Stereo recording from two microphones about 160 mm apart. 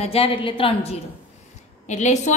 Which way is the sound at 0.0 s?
35° left (ahead or behind).